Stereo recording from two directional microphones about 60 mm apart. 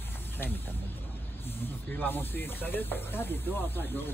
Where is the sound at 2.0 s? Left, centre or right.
Left.